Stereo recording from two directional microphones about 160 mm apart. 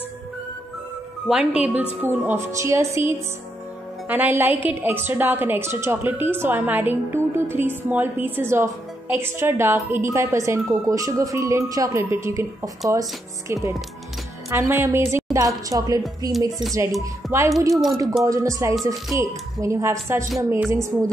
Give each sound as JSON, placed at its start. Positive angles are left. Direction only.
{"t": 1.3, "sound": "a woman's voice", "side_deg": -5}
{"t": 4.1, "sound": "a woman's voice", "side_deg": -10}
{"t": 16.3, "sound": "speech", "side_deg": 0}
{"t": 16.7, "sound": "a woman's voice", "side_deg": -20}